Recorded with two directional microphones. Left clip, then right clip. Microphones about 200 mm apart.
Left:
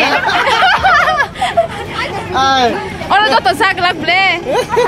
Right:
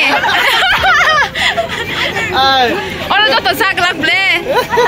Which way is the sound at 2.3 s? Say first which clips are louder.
Even; 65° left (ahead or behind).